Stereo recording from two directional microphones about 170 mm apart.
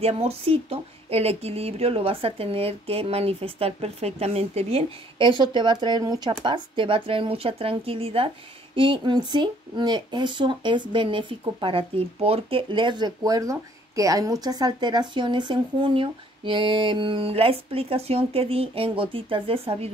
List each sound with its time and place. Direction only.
0.0 s speech: 35° right (ahead or behind)